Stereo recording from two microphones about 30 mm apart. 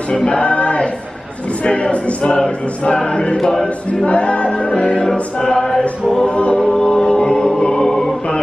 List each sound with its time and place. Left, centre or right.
0.1 s music: left
1.6 s a capella: left
3.3 s choir: left
4.0 s music: left
5.4 s music: centre
6.1 s music: left
6.7 s music: left
7.1 s music: left
7.8 s choir: centre